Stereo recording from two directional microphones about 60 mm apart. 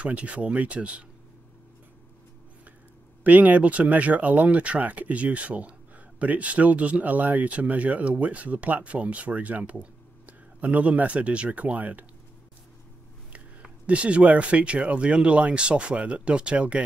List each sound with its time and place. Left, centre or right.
0.0 s speech: right
3.3 s speech: right
13.3 s speech: right